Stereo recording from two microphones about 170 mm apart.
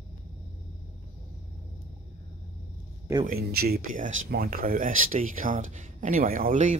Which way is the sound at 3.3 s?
65° right (ahead or behind).